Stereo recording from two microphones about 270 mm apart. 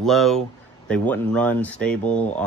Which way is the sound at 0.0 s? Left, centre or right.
Centre.